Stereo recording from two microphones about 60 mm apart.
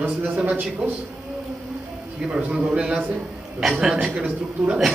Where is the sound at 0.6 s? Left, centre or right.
Right.